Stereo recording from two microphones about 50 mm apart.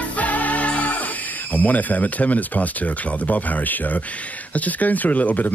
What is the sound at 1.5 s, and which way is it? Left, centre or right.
Speech, left.